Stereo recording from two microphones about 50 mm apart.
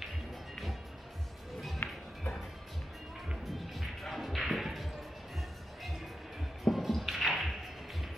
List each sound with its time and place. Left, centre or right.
1.8 s music: left
3.5 s music: centre
6.6 s music: centre